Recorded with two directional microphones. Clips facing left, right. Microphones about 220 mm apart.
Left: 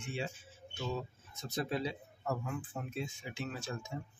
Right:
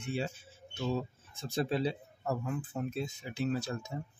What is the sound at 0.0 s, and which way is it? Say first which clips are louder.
Speech: right 4 dB; 35° right (ahead or behind).